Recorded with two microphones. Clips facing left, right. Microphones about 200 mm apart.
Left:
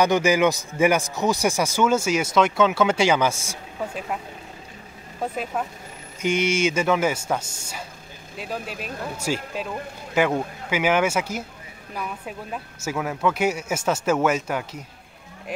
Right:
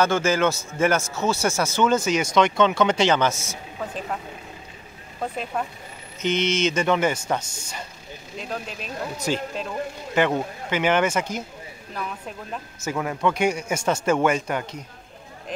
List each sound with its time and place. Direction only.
0.0 s a man's voice: 15° left (ahead or behind)
5.2 s a man's voice: 5° left (ahead or behind)